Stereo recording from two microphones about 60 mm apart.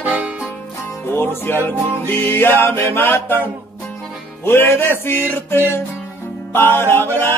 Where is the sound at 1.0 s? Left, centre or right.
Left.